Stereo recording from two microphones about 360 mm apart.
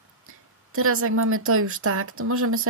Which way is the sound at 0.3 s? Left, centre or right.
Right.